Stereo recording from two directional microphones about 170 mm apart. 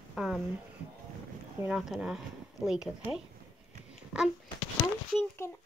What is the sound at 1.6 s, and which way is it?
Speech, 5° right (ahead or behind).